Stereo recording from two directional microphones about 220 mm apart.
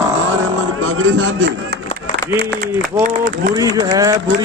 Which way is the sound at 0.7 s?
65° right (ahead or behind).